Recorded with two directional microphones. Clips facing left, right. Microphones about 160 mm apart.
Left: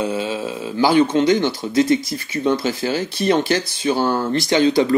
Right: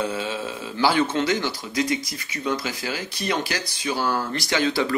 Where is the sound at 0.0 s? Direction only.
10° left (ahead or behind).